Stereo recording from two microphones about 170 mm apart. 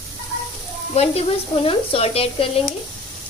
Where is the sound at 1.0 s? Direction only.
35° left (ahead or behind).